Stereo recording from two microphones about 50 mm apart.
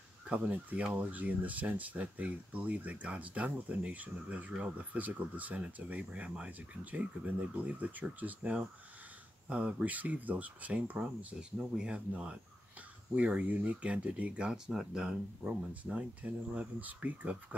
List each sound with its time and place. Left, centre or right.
0.3 s speech: right
11.5 s speech: centre
14.5 s speech: centre
15.4 s speech: right